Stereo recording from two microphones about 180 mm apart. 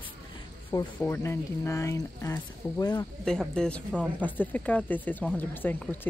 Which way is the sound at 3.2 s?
5° left (ahead or behind).